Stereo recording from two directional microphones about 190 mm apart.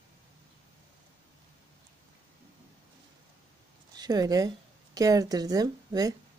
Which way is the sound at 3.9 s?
20° right (ahead or behind).